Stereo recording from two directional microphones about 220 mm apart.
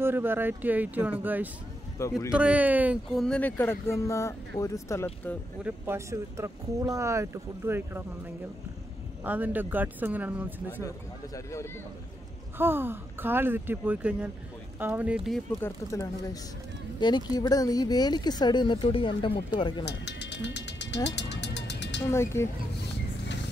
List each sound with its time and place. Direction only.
0.0 s speech: 10° right (ahead or behind)
2.0 s speech: 15° left (ahead or behind)
2.3 s speech: 5° right (ahead or behind)
5.6 s speech: 10° right (ahead or behind)
9.2 s speech: 5° right (ahead or behind)
12.5 s speech: 10° right (ahead or behind)
17.0 s speech: 20° left (ahead or behind)
19.8 s speech: 50° left (ahead or behind)
21.1 s music: 50° left (ahead or behind)
22.1 s speech: 10° left (ahead or behind)